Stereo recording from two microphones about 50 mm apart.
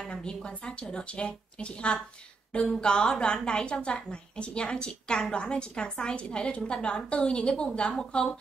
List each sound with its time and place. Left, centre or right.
0.1 s a woman's voice: centre